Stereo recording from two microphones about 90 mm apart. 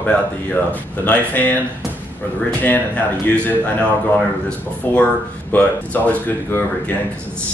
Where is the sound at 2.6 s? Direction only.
20° left (ahead or behind).